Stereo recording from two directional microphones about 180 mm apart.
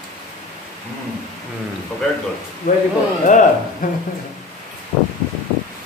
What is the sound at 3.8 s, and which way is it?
Speech, 50° left (ahead or behind).